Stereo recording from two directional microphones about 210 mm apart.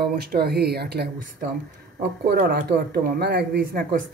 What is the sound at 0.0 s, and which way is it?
Speech, 50° right (ahead or behind).